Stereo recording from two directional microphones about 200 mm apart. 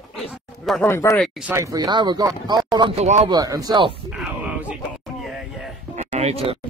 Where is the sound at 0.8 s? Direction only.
10° left (ahead or behind).